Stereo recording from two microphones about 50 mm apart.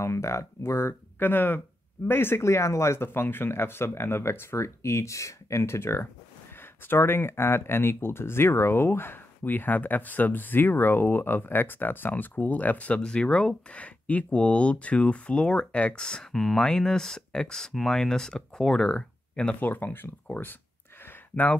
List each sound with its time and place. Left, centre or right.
0.0 s speech: left
1.2 s speech: left
2.0 s speech: left
3.1 s speech: left
6.5 s speech: left
13.0 s speech: centre
13.7 s speech: left; by 18.9 s centre
18.9 s a sound: left
19.6 s speech: left